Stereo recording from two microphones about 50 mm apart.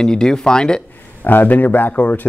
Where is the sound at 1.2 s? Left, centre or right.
Left.